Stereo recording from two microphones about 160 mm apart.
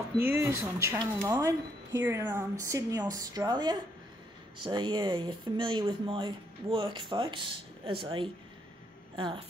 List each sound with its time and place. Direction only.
0.2 s speech: 15° right (ahead or behind); by 9.4 s 30° right (ahead or behind)